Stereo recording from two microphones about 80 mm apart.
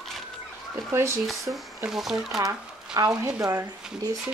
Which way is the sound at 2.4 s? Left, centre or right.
Right.